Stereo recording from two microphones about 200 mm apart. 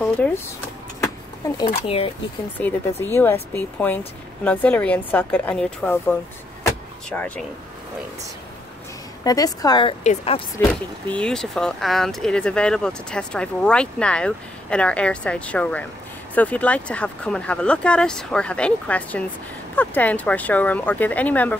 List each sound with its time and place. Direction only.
0.0 s speech: 10° left (ahead or behind)
1.4 s speech: 20° left (ahead or behind)
2.6 s speech: 5° left (ahead or behind)
9.2 s a woman's voice: 20° left (ahead or behind)
10.7 s speech: 5° left (ahead or behind)